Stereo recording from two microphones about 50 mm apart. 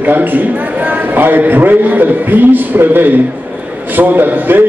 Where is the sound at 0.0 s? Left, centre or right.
Right.